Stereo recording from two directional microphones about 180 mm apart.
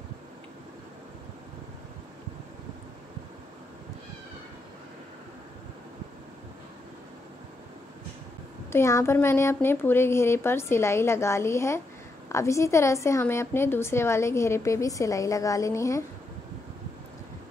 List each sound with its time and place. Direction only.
8.7 s a woman's voice: 15° left (ahead or behind)